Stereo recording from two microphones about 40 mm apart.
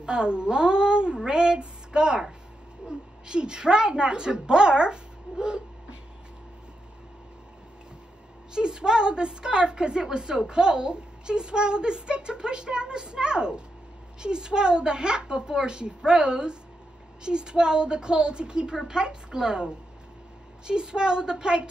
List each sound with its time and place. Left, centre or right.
0.0 s a woman's voice: right
8.5 s a woman's voice: right